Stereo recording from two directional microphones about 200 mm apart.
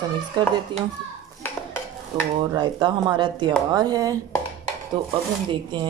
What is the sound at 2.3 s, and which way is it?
Speech, 25° right (ahead or behind).